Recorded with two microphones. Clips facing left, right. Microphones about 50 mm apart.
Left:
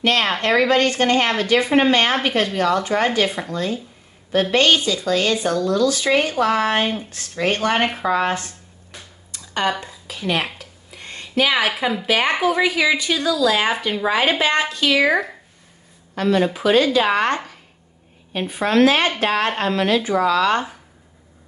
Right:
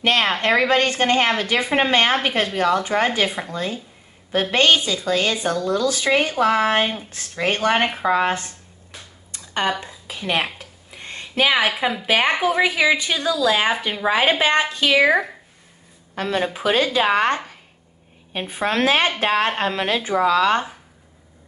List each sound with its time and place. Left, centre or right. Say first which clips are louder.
0.0 s speech: even; right
9.3 s a sound: left 1 dB; right
9.7 s a woman's voice: left 1 dB; centre
10.6 s a sound: even; right
11.6 s speech: even; centre
16.2 s speech: left 4 dB; right
18.5 s speech: left 3 dB; right